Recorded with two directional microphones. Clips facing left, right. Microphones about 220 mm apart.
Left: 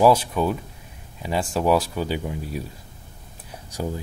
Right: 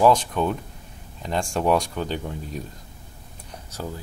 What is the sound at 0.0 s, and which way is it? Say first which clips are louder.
Speech: left 1 dB; 10° left (ahead or behind).